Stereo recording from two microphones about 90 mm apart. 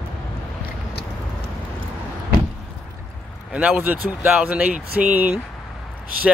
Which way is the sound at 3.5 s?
20° right (ahead or behind).